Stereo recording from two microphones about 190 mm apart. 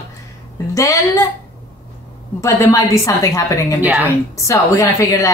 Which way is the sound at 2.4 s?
15° left (ahead or behind).